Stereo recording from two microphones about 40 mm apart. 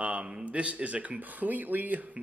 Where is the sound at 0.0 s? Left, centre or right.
Right.